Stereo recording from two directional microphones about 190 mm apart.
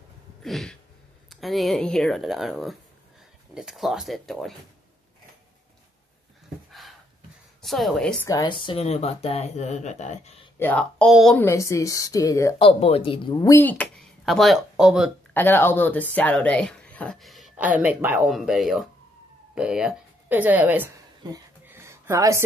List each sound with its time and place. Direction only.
0.4 s a sound: centre (ahead or behind)
1.3 s speech: centre (ahead or behind)
7.6 s speech: centre (ahead or behind)
8.3 s speech: 20° left (ahead or behind)
10.6 s speech: 5° left (ahead or behind)
11.4 s a woman's voice: 15° left (ahead or behind)
12.6 s speech: 30° left (ahead or behind); by 15.0 s 5° right (ahead or behind)
15.3 s speech: 10° left (ahead or behind); by 20.9 s 10° right (ahead or behind)
21.2 s speech: 20° right (ahead or behind)
21.6 s a sound: 10° right (ahead or behind)